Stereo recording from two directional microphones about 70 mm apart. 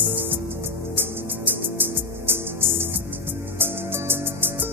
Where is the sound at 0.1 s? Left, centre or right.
Right.